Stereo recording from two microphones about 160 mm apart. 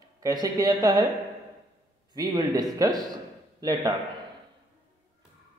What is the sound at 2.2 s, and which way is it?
A man's voice, 25° right (ahead or behind).